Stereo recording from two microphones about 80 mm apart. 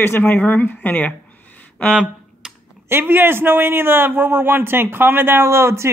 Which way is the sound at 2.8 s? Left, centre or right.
Right.